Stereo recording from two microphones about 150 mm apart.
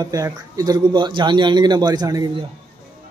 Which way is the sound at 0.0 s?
20° right (ahead or behind).